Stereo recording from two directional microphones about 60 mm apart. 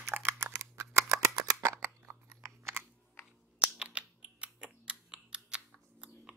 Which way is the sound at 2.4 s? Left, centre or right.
Right.